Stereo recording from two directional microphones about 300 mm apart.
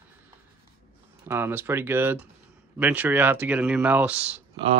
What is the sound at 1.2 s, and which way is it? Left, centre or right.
Speech, centre.